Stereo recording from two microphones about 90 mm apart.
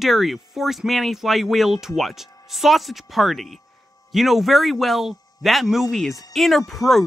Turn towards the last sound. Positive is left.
turn(degrees=0)  # may be behind; listen again after turning